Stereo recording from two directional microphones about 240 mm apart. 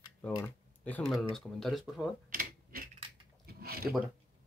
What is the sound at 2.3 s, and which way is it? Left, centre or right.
Mechanisms, right.